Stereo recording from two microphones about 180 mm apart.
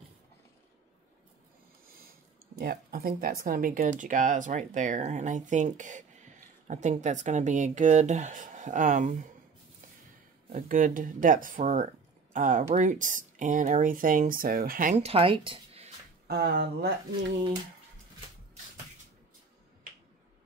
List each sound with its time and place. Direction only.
2.5 s speech: 55° right (ahead or behind)
10.5 s speech: 50° right (ahead or behind)
15.0 s speech: 35° right (ahead or behind)
16.3 s speech: 65° right (ahead or behind)